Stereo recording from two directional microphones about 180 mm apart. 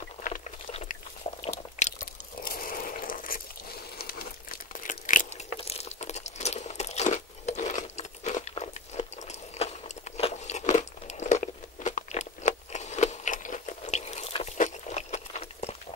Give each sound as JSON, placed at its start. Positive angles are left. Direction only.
{"t": 1.8, "sound": "crunch", "side_deg": 40}
{"t": 4.0, "sound": "crumpling", "side_deg": 60}
{"t": 5.6, "sound": "crunch", "side_deg": 35}